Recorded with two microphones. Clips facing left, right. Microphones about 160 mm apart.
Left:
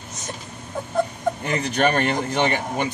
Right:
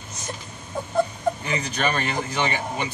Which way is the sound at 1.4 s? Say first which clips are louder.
Left 5 dB; 55° left (ahead or behind).